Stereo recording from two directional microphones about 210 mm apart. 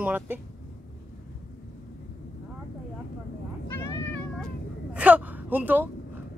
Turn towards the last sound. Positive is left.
turn(degrees=-10)  # may be behind; listen again after turning